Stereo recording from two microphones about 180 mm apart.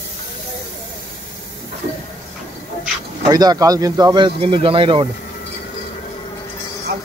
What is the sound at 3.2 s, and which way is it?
Speech, 20° right (ahead or behind).